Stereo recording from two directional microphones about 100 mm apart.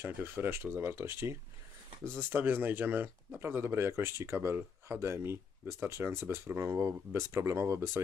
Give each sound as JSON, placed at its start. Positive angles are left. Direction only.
{"t": 0.0, "sound": "speech", "side_deg": -20}